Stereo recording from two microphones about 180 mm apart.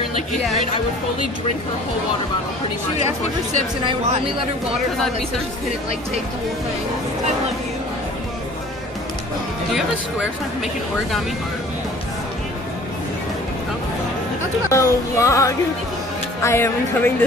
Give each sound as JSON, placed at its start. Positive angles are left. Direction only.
{"t": 14.7, "sound": "speech", "side_deg": 15}